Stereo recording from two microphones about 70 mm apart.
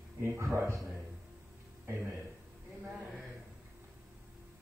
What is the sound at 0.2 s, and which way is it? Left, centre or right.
Speech, right.